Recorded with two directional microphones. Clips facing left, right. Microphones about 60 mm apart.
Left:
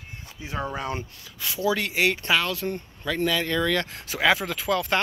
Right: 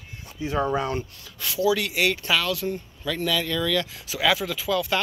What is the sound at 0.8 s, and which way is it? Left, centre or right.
Speech, left.